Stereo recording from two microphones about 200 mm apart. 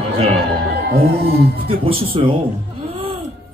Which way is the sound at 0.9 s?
50° right (ahead or behind).